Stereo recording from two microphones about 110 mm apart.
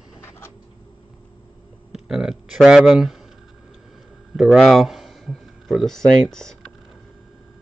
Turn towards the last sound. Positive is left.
turn(degrees=5)  # may be behind; listen again after turning